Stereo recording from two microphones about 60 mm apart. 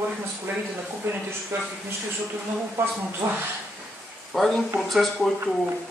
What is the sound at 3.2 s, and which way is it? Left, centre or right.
Speech, right.